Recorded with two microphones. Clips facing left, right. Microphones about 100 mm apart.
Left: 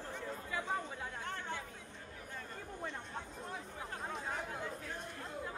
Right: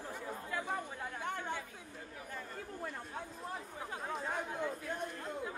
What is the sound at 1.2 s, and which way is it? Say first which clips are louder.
Chatter: right 5 dB; 10° right (ahead or behind).